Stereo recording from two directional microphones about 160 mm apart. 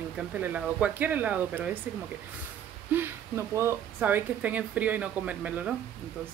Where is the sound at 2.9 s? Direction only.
15° right (ahead or behind).